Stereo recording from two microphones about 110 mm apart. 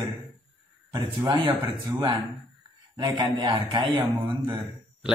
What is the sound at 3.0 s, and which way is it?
A man's voice, 40° right (ahead or behind).